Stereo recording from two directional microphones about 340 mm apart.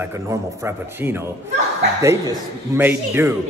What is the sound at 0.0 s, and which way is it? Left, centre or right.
A man's voice, centre.